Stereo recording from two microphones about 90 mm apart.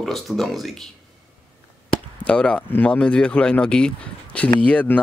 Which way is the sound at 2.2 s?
10° left (ahead or behind).